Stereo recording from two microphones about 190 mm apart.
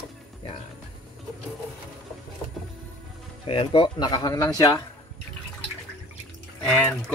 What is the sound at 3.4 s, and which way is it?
Speech, 30° left (ahead or behind).